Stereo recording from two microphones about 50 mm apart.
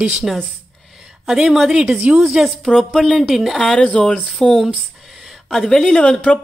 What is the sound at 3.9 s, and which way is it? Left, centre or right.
Speech, left.